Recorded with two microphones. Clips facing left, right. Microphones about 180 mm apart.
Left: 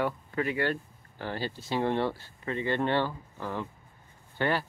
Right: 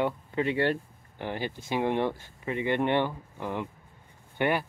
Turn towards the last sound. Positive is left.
turn(degrees=-15)  # may be behind; listen again after turning